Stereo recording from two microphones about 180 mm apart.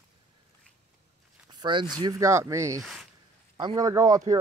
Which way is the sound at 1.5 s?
25° right (ahead or behind).